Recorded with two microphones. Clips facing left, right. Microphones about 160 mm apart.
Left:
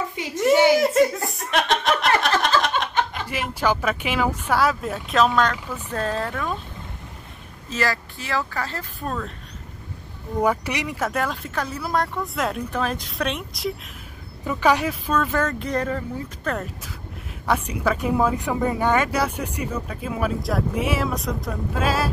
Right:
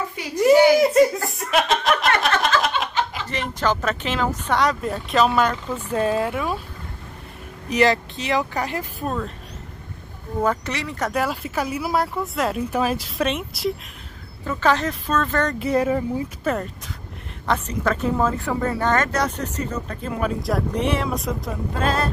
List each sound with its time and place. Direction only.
0.1 s a sound: 20° left (ahead or behind)
0.7 s laughter: centre (ahead or behind)
3.3 s speech: 10° left (ahead or behind); by 6.6 s 10° right (ahead or behind)
7.7 s speech: 20° right (ahead or behind)
9.0 s speech: 5° right (ahead or behind)
10.4 s speech: 10° left (ahead or behind)
11.0 s speech: centre (ahead or behind)
14.4 s speech: 10° left (ahead or behind)
15.6 s speech: 10° right (ahead or behind)
17.5 s speech: 10° left (ahead or behind)